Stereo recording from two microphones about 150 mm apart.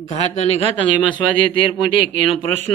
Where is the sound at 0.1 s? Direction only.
45° left (ahead or behind).